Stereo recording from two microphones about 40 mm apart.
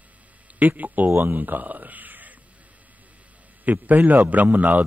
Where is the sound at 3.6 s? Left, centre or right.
Right.